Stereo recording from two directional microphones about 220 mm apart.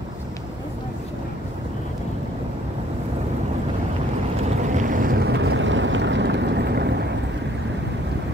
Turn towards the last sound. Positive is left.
turn(degrees=-50)  # may be behind; listen again after turning